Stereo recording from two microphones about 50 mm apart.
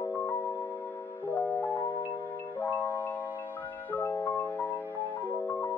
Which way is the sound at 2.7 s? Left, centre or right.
Left.